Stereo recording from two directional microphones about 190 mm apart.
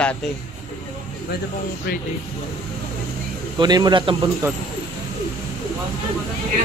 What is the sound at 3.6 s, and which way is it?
Speech, 20° right (ahead or behind).